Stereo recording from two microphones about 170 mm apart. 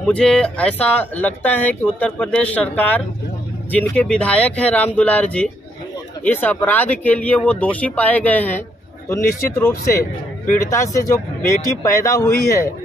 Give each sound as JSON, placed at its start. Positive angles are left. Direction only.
{"t": 0.0, "sound": "speech", "side_deg": 5}